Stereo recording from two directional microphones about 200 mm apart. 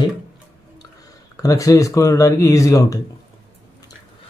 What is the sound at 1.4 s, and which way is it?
Speech, 15° left (ahead or behind).